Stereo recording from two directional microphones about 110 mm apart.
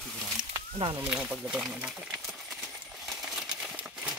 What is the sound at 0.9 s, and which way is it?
Speech, 10° right (ahead or behind).